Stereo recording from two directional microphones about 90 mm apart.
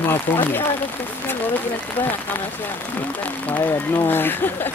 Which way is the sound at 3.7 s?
25° left (ahead or behind).